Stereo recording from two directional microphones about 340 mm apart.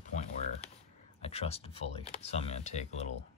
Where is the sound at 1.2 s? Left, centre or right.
Centre.